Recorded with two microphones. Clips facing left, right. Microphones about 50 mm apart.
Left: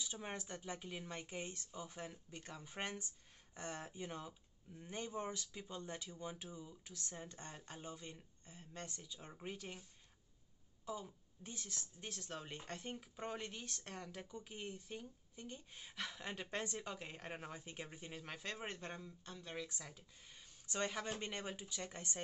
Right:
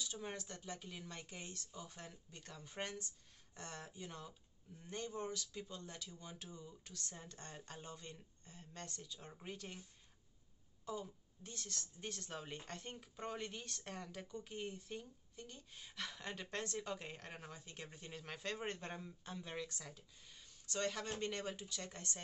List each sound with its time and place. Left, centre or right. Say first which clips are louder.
0.0 s speech: even; left
10.9 s speech: right 1 dB; centre
12.0 s speech: right 1 dB; centre
14.2 s speech: right 2 dB; centre
15.4 s speech: left 5 dB; centre
17.2 s speech: left 4 dB; centre
18.9 s speech: right 3 dB; centre
19.7 s speech: even; centre
20.3 s speech: left 1 dB; centre